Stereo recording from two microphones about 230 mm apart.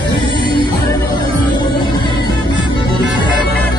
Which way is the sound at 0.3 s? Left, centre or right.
Right.